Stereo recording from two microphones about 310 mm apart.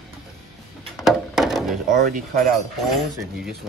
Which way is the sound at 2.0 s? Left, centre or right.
Right.